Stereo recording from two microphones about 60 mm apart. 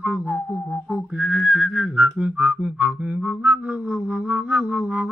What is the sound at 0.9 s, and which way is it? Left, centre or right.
Whistling, centre.